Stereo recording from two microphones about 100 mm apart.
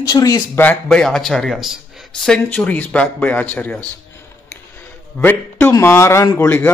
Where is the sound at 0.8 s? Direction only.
5° left (ahead or behind).